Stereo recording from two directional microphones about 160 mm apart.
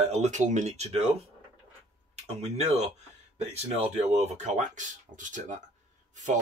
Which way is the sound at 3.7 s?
40° right (ahead or behind).